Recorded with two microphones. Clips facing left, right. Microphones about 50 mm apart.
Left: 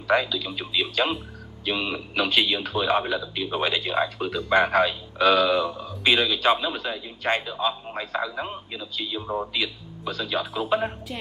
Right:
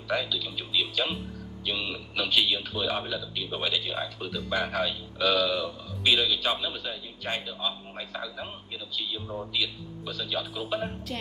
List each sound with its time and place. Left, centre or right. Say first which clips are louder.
0.1 s a man's voice: left 7 dB; left